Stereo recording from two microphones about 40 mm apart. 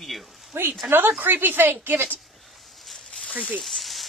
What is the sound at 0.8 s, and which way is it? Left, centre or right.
Speech, right.